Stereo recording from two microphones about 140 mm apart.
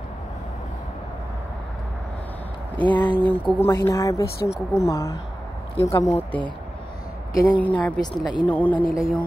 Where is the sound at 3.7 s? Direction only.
20° left (ahead or behind).